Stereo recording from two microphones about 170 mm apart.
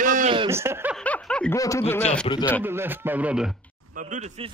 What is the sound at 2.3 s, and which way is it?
Speech, 35° left (ahead or behind).